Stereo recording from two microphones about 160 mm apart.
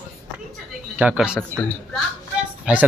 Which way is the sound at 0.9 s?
5° right (ahead or behind).